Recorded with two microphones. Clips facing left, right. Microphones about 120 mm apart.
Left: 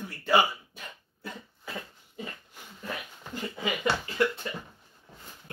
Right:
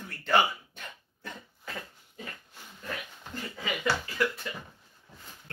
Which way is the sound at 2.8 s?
15° left (ahead or behind).